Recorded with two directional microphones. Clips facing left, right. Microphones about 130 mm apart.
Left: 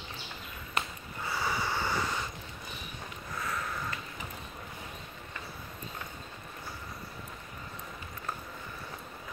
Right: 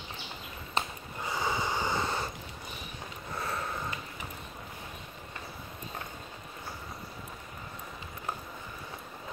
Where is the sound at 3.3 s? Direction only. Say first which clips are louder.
Right 1 dB; 30° right (ahead or behind).